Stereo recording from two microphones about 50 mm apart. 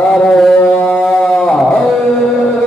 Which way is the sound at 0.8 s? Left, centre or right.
Centre.